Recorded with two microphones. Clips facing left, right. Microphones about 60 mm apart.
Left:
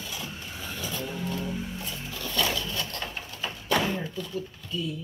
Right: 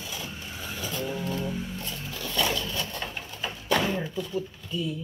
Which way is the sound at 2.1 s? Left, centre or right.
Centre.